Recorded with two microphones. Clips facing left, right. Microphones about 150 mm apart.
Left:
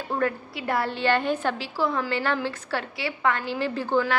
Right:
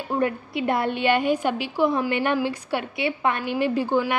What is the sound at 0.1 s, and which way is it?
A woman's voice, 20° right (ahead or behind).